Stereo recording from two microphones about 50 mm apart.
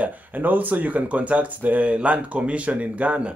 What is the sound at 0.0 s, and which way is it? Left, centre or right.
A man's voice, right.